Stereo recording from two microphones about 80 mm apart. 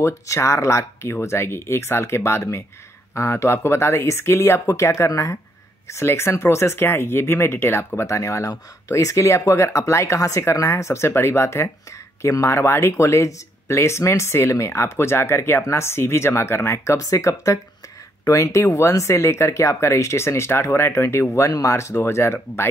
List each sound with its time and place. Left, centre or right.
0.0 s speech: left
21.5 s speech: left